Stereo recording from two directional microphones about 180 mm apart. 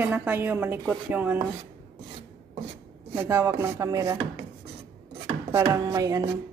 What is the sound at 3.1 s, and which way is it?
Speech, 15° right (ahead or behind).